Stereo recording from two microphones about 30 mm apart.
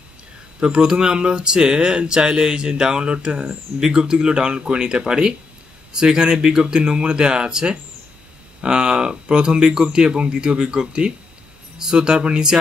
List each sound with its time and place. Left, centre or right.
0.6 s speech: right
3.8 s speech: right